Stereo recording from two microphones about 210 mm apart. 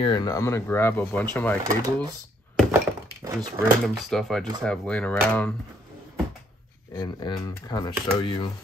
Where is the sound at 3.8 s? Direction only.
Centre (ahead or behind).